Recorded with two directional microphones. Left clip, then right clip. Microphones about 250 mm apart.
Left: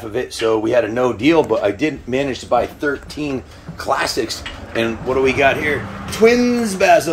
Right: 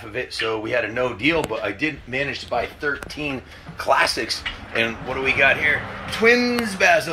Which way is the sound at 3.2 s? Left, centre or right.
Right.